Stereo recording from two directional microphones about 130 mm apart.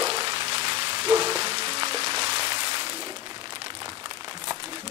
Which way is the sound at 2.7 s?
45° right (ahead or behind).